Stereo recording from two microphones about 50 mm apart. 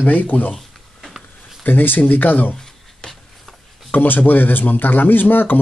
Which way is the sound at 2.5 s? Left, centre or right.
Centre.